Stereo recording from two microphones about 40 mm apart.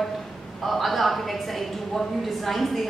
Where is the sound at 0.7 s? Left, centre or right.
Centre.